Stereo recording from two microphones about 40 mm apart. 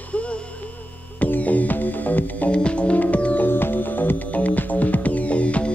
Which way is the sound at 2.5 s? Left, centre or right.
Left.